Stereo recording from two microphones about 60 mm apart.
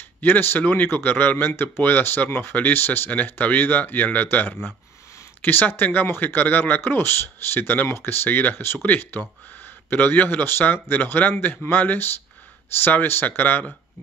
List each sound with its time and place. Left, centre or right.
0.2 s speech: left